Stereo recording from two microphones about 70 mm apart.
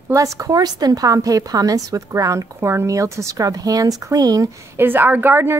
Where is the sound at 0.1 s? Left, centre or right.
Right.